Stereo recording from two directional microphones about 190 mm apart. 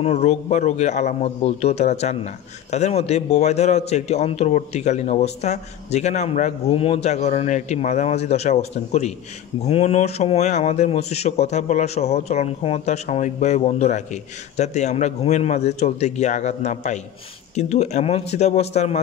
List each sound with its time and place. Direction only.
0.0 s a man's voice: 35° left (ahead or behind)